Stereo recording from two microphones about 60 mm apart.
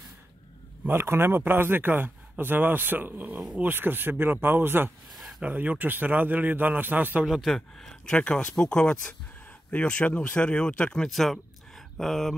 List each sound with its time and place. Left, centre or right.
0.8 s a man's voice: right
5.4 s a man's voice: right
7.2 s speech: centre
11.1 s speech: centre